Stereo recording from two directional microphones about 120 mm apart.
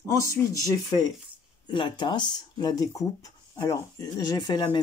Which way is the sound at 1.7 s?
40° left (ahead or behind).